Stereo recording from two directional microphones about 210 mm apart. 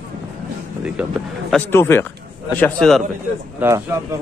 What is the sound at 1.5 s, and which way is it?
A man's voice, 10° left (ahead or behind).